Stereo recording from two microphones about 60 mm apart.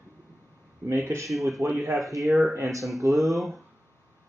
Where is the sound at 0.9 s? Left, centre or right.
Right.